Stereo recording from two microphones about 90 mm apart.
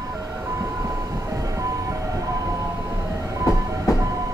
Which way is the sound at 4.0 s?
40° right (ahead or behind).